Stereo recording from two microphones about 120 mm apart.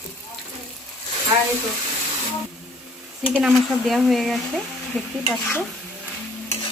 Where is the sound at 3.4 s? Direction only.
Centre (ahead or behind).